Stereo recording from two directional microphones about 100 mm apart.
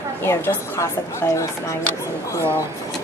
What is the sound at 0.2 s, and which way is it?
A woman's voice, 25° left (ahead or behind).